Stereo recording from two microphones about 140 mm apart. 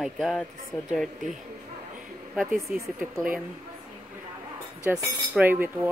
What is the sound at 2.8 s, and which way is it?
Speech, 20° right (ahead or behind).